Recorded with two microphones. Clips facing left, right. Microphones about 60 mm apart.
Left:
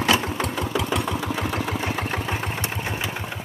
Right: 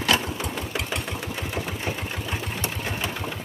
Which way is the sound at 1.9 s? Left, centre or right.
Left.